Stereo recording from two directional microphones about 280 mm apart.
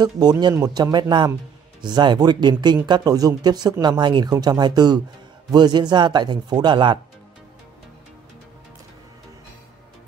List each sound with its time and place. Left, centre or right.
0.0 s speech: centre